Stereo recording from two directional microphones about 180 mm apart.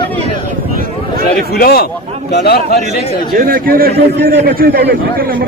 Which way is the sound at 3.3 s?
55° right (ahead or behind).